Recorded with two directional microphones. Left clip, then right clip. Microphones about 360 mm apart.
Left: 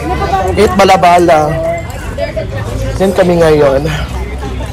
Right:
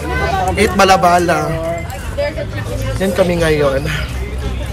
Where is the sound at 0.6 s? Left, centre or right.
Centre.